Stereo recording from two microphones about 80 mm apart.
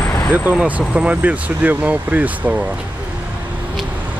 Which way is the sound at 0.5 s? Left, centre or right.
Centre.